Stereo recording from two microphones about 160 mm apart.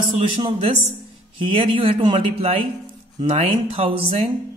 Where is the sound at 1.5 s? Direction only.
35° right (ahead or behind).